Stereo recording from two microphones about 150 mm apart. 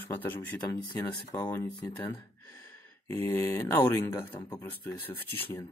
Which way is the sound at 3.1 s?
15° left (ahead or behind).